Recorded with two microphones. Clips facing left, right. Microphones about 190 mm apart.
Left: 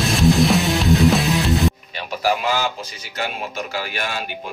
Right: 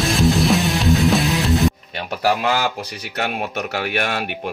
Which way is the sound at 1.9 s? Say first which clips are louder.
Right 1 dB; 60° right (ahead or behind).